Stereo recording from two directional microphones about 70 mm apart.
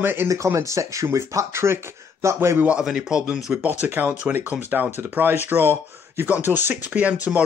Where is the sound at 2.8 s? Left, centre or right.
Centre.